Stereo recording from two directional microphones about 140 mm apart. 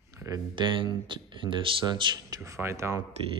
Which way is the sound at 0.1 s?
25° right (ahead or behind).